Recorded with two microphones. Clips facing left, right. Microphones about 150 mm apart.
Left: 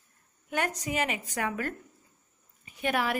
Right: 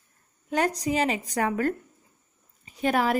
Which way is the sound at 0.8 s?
30° right (ahead or behind).